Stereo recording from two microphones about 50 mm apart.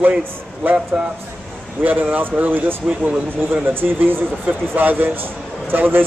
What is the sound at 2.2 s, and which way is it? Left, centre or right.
A man's voice, right.